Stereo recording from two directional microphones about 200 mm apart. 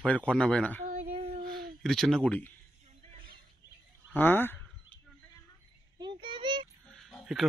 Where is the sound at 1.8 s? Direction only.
Centre (ahead or behind).